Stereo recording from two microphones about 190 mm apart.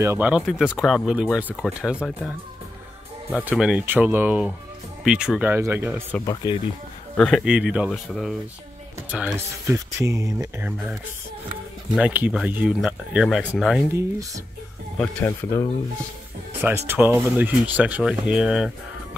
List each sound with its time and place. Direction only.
0.0 s speech: 10° right (ahead or behind)
3.3 s speech: 5° right (ahead or behind)
6.2 s speech: 20° left (ahead or behind)
7.2 s speech: centre (ahead or behind)
15.0 s speech: 10° left (ahead or behind)
16.6 s speech: 10° right (ahead or behind)